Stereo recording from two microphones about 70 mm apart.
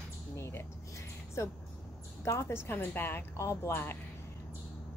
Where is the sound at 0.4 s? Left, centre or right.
Left.